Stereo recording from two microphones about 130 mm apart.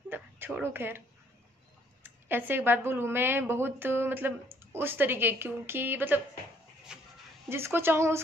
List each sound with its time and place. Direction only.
0.1 s a sound: 15° right (ahead or behind)
2.0 s a woman's voice: 15° right (ahead or behind)
6.9 s music: 5° right (ahead or behind)
7.4 s speech: 20° right (ahead or behind)